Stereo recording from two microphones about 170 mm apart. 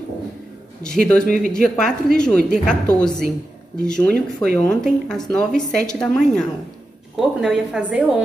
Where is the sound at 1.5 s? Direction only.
5° left (ahead or behind).